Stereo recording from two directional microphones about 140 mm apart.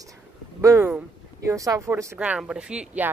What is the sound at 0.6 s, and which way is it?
Speech, 20° right (ahead or behind).